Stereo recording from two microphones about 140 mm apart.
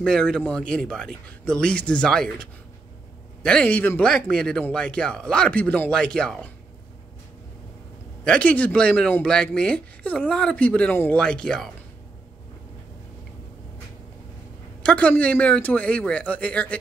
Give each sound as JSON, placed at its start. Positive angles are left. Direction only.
{"t": 0.0, "sound": "speech", "side_deg": 5}
{"t": 3.4, "sound": "speech", "side_deg": 10}
{"t": 8.2, "sound": "speech", "side_deg": 10}
{"t": 14.8, "sound": "speech", "side_deg": 10}